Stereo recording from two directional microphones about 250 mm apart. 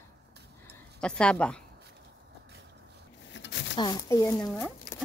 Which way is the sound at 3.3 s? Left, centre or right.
Left.